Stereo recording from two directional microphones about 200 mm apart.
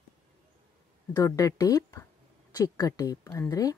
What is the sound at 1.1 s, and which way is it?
A woman's voice, 15° left (ahead or behind).